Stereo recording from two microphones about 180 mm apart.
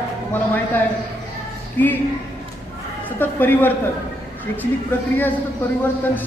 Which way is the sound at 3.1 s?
10° left (ahead or behind).